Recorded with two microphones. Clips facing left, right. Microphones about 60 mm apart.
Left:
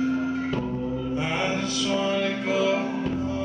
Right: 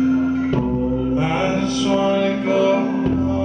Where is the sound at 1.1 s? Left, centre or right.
Centre.